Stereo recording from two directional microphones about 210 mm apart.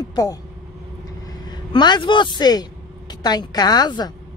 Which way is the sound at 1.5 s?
20° left (ahead or behind).